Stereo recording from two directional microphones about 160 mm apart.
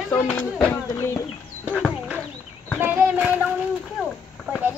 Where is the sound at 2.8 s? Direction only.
10° right (ahead or behind).